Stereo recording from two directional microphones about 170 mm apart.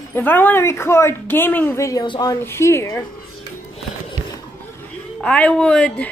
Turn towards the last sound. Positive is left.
turn(degrees=5)  # may be behind; listen again after turning